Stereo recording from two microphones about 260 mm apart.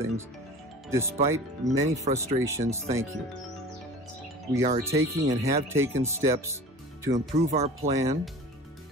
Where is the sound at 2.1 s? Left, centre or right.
Right.